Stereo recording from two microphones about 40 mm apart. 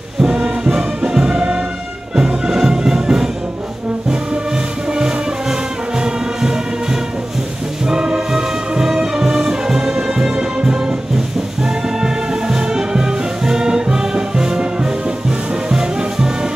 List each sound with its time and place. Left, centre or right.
0.2 s music: right
4.9 s music: centre